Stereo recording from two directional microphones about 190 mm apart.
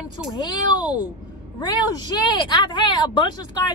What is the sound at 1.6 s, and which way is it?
A woman's voice, 20° left (ahead or behind).